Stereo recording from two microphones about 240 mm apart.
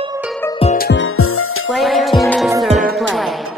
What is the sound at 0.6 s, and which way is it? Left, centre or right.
Music, left.